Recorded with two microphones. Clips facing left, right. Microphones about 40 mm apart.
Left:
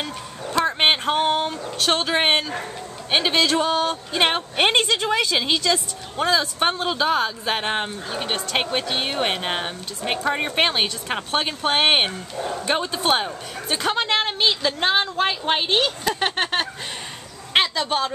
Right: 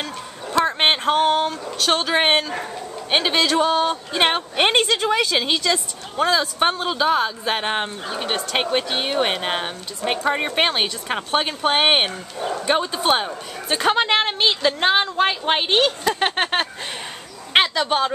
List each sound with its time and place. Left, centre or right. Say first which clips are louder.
0.0 s a sound: even; centre
3.1 s speech: even; centre
13.7 s a woman's voice: right 4 dB; centre